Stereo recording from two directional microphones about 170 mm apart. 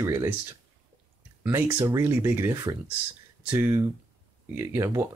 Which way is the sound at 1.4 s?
15° right (ahead or behind).